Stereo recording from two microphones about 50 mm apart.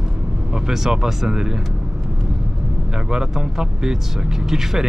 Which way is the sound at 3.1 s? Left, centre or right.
Centre.